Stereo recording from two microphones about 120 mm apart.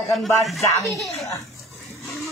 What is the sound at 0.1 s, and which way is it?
Speech, centre (ahead or behind).